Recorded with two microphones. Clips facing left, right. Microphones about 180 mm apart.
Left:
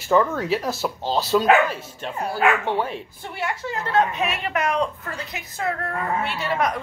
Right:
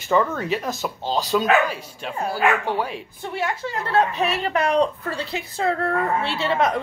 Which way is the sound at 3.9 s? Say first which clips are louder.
Right 1 dB; 35° right (ahead or behind).